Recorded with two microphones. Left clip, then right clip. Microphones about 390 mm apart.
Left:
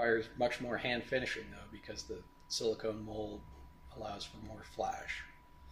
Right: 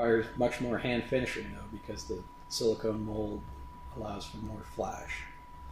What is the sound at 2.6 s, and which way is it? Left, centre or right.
Speech, left.